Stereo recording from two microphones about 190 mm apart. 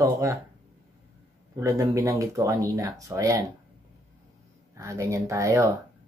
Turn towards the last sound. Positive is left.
turn(degrees=-15)  # may be behind; listen again after turning